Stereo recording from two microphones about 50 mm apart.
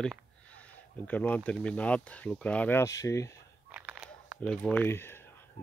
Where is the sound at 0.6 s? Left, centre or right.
Left.